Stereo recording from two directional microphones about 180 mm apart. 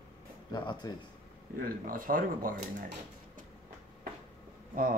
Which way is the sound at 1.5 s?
55° right (ahead or behind).